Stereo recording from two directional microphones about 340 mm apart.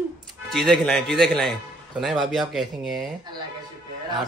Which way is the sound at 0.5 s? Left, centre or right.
Centre.